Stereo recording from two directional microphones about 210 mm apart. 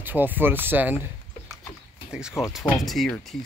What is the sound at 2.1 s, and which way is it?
Speech, 5° right (ahead or behind).